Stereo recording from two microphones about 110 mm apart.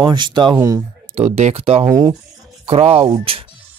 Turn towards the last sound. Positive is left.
turn(degrees=-60)  # may be behind; listen again after turning